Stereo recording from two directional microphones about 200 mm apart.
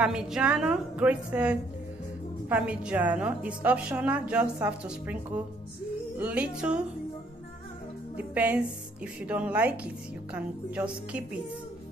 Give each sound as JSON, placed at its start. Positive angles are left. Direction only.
{"t": 0.0, "sound": "a woman's voice", "side_deg": -5}
{"t": 6.1, "sound": "a woman's voice", "side_deg": -5}
{"t": 8.2, "sound": "a woman's voice", "side_deg": -5}